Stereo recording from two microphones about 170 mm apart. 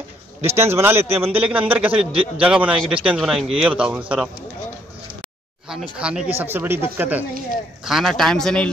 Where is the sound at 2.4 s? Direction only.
5° right (ahead or behind).